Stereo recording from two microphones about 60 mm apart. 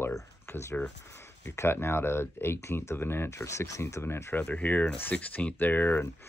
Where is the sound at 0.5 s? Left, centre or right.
Left.